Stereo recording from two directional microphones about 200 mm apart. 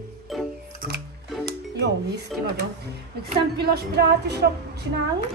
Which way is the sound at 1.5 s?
55° right (ahead or behind).